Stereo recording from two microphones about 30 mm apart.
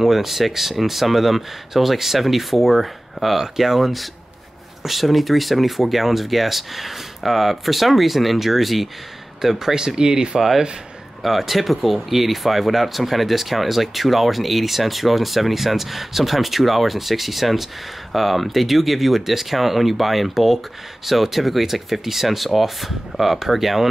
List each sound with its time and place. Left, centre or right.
0.0 s speech: centre; by 10.4 s right
11.2 s speech: centre